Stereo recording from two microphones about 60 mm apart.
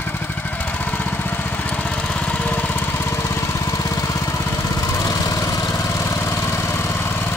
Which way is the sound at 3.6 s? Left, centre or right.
Left.